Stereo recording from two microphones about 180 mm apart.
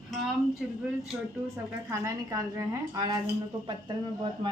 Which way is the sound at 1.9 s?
15° right (ahead or behind).